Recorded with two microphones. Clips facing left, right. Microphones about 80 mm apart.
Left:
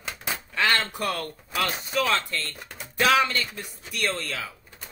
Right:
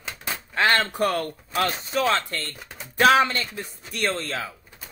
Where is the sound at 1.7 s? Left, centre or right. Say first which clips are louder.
Right 2 dB; centre.